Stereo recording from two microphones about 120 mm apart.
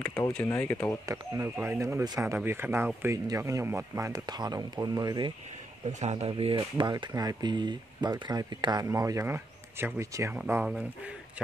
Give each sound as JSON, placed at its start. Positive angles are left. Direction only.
{"t": 0.5, "sound": "speech", "side_deg": 20}
{"t": 1.0, "sound": "speech", "side_deg": -25}
{"t": 5.9, "sound": "speech", "side_deg": -70}
{"t": 6.3, "sound": "speech", "side_deg": -45}
{"t": 10.6, "sound": "speech", "side_deg": -5}